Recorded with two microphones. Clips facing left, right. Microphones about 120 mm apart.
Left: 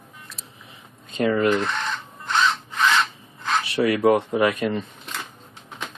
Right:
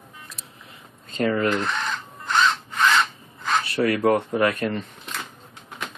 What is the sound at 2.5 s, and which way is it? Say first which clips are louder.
Crow: even; centre (ahead or behind).